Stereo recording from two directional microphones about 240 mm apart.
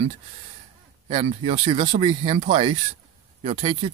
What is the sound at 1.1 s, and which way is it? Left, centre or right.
Speech, right.